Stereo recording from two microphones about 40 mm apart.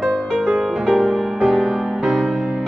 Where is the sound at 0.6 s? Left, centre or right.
Centre.